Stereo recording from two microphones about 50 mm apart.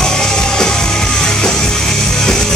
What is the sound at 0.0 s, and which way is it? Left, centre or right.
Music, centre.